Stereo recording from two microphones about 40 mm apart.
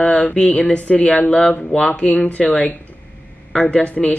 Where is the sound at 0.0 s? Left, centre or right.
Left.